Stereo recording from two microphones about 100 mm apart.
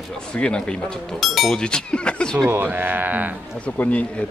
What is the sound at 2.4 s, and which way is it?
Speech, 25° right (ahead or behind).